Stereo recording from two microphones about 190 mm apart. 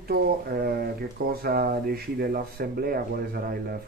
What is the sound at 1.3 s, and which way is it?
Speech, 55° right (ahead or behind).